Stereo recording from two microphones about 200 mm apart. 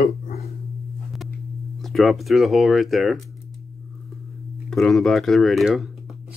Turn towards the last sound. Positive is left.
turn(degrees=0)  # may be behind; listen again after turning